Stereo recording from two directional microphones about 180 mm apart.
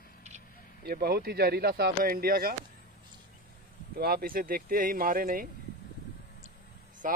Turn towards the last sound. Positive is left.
turn(degrees=-50)  # may be behind; listen again after turning